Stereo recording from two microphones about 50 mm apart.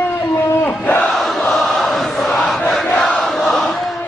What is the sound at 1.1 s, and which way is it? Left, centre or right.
Chant, centre.